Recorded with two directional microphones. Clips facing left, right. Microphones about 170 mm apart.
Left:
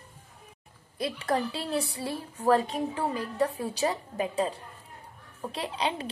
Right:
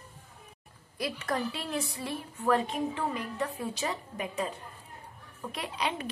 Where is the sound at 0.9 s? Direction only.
30° left (ahead or behind).